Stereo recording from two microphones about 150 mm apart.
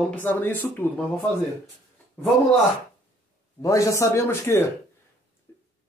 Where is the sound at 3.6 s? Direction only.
20° left (ahead or behind).